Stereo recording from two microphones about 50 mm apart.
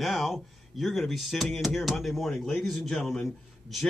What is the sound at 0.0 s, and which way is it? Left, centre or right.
Speech, centre.